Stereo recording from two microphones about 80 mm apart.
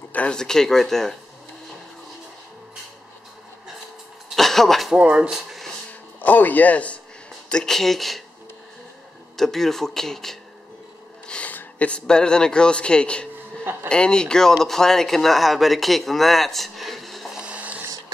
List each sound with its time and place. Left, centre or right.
0.1 s speech: centre
4.4 s a sound: centre
4.9 s speech: centre
6.2 s a man's voice: left; by 8.2 s centre
9.4 s speech: centre
11.2 s a man's voice: centre
17.4 s music: centre